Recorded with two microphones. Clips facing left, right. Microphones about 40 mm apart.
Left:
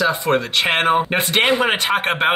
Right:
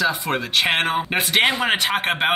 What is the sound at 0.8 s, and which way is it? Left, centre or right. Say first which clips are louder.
Speech: left 5 dB; centre.